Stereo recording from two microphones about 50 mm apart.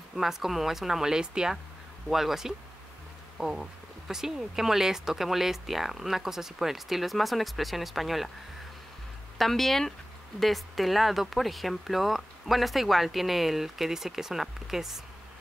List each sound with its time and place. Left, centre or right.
0.1 s speech: centre
9.4 s speech: centre